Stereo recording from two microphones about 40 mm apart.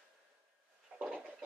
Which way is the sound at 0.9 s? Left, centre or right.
Right.